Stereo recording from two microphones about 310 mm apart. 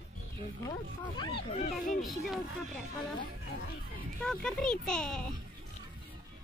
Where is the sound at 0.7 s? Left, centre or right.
Centre.